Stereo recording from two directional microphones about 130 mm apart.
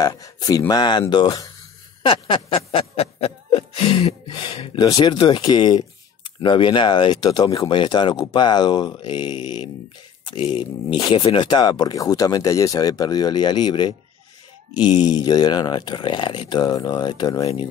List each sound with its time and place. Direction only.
0.0 s speech: 25° left (ahead or behind)
2.0 s snicker: 40° left (ahead or behind)
6.4 s speech: 35° left (ahead or behind)